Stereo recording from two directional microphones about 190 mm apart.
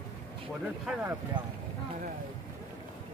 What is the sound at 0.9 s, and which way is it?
Speech, 5° right (ahead or behind).